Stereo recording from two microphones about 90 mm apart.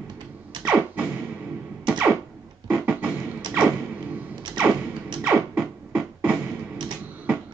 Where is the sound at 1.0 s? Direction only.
15° right (ahead or behind).